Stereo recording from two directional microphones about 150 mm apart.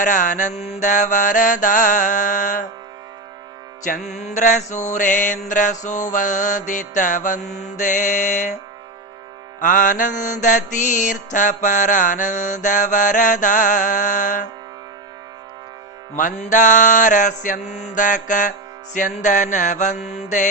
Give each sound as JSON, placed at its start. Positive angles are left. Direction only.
{"t": 0.0, "sound": "mantra", "side_deg": 55}
{"t": 3.8, "sound": "mantra", "side_deg": 55}
{"t": 9.6, "sound": "mantra", "side_deg": 60}
{"t": 16.2, "sound": "mantra", "side_deg": 60}